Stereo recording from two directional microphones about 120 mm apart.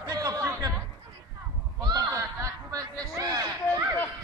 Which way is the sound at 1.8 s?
30° right (ahead or behind).